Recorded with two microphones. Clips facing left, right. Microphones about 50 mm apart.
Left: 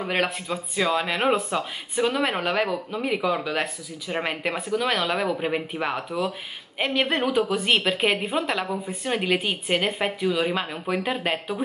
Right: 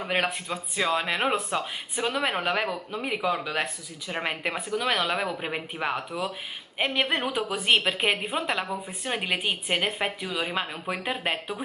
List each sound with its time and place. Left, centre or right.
0.0 s speech: centre